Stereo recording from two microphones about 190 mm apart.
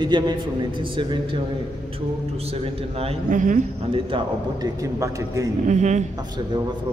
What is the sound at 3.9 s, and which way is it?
Speech, 25° right (ahead or behind).